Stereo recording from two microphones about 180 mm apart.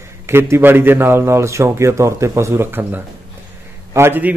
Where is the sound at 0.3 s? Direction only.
15° right (ahead or behind).